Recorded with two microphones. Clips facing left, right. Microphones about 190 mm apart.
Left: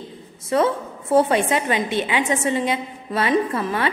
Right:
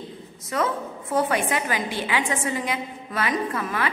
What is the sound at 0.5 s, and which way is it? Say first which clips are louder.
A woman's voice: left 6 dB; 25° left (ahead or behind).